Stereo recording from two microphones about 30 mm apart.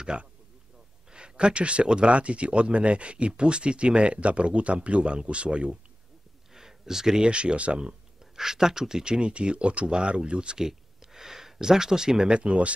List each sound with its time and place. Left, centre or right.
0.0 s speech: right
6.5 s a sound: centre
7.2 s speech: right
8.4 s speech: centre
9.2 s speech: right
10.6 s speech: centre
12.4 s speech: right